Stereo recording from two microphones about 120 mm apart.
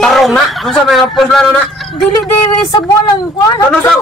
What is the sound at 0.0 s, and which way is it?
Speech, centre (ahead or behind).